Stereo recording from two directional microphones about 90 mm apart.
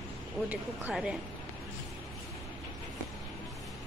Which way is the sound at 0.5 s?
15° right (ahead or behind).